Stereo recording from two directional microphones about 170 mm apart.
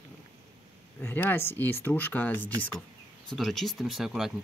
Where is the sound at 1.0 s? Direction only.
10° left (ahead or behind).